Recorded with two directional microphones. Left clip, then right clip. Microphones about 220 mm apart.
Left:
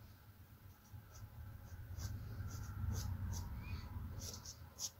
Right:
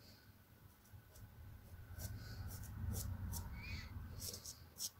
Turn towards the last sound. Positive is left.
turn(degrees=-10)  # may be behind; listen again after turning